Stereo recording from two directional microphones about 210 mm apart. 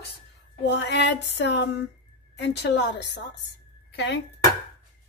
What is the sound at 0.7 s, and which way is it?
Music, 55° left (ahead or behind).